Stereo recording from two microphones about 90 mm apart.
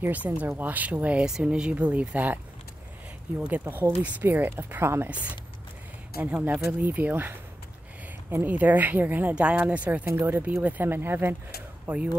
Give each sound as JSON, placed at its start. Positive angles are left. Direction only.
{"t": 0.0, "sound": "speech", "side_deg": -15}
{"t": 6.2, "sound": "speech", "side_deg": -20}
{"t": 8.5, "sound": "speech", "side_deg": -20}